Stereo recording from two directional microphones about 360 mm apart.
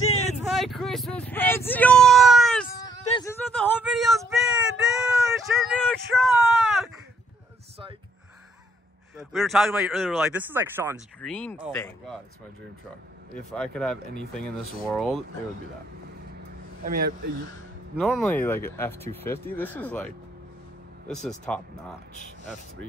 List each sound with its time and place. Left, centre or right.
0.5 s a sound: centre
3.5 s child singing: centre
9.1 s speech: centre
13.5 s speech: centre
16.8 s speech: right
17.9 s speech: centre
21.5 s speech: centre